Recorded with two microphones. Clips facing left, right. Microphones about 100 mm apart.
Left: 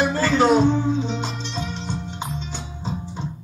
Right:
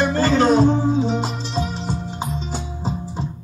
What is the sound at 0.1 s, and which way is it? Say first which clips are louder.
Music: right 1 dB; 40° right (ahead or behind).